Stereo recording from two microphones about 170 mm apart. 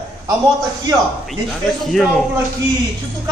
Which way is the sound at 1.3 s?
Centre (ahead or behind).